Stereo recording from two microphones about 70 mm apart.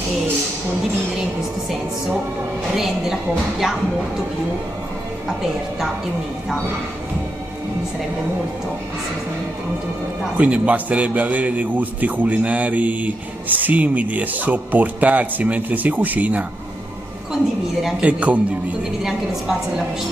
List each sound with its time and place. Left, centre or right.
2.7 s a woman's voice: centre
10.3 s a man's voice: centre
18.0 s a man's voice: centre